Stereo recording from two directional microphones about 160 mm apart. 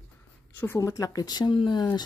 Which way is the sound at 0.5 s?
15° left (ahead or behind).